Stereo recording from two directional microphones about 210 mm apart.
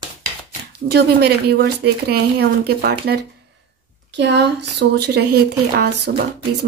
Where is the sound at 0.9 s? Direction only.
50° right (ahead or behind).